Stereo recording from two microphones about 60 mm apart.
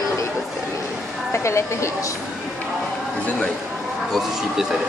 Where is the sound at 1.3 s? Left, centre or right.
Left.